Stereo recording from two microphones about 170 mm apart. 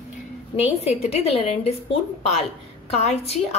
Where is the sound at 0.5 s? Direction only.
35° left (ahead or behind).